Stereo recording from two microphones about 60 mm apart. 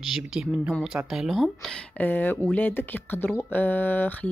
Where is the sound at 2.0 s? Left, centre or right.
Left.